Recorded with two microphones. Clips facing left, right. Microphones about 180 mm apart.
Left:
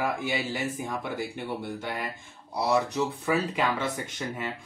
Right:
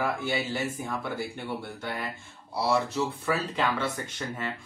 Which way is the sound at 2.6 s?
15° left (ahead or behind).